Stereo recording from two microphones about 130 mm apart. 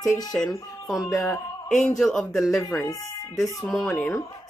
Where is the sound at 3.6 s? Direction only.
5° left (ahead or behind).